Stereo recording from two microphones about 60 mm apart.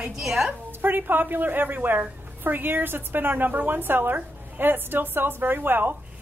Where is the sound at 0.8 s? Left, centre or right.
Right.